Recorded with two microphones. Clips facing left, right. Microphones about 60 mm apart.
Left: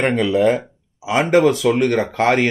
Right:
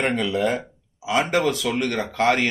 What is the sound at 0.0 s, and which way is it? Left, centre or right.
Speech, left.